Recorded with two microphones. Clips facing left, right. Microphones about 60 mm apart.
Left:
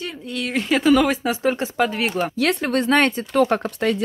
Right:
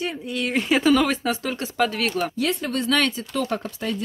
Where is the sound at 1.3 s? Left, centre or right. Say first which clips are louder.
Left 6 dB; left.